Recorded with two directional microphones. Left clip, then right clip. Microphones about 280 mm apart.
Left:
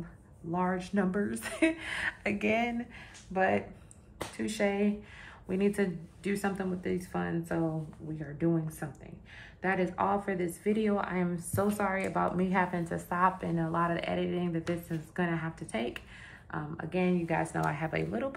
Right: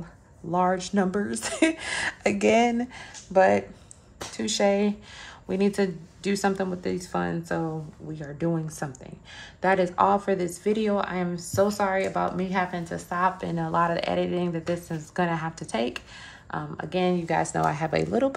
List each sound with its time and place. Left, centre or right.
0.5 s a woman's voice: centre